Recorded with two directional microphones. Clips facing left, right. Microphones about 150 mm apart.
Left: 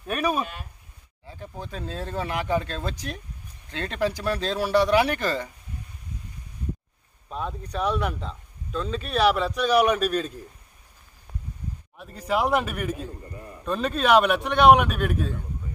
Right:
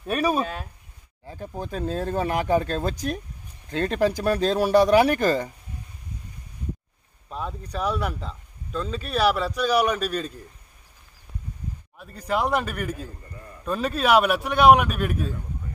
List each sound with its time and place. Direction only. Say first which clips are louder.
0.0 s speech: right 2 dB; 30° right (ahead or behind)
1.2 s a sound: right 4 dB; 45° right (ahead or behind)
1.6 s speech: right 6 dB; 45° right (ahead or behind)
7.2 s speech: left 1 dB; centre (ahead or behind)
12.0 s speech: left 1 dB; centre (ahead or behind)
13.2 s a sound: left 3 dB; 25° left (ahead or behind)
13.7 s speech: even; 5° right (ahead or behind)